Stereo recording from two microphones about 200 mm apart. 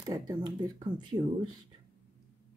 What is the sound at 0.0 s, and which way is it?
Speech, 20° right (ahead or behind).